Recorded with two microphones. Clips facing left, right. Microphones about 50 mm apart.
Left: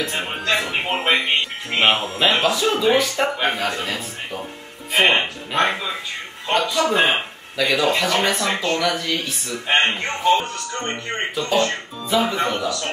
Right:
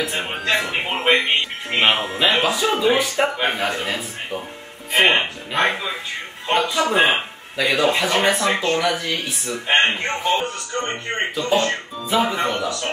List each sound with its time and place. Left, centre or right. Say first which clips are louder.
0.0 s speech: right 1 dB; centre
0.6 s a man's voice: even; centre
4.9 s speech: even; centre
6.7 s speech: even; right
7.0 s a man's voice: right 4 dB; centre
7.5 s speech: even; centre
9.7 s speech: right 1 dB; centre
10.4 s speech: right 2 dB; right
10.9 s a man's voice: right 1 dB; centre
11.4 s speech: even; centre
12.4 s a man's voice: even; centre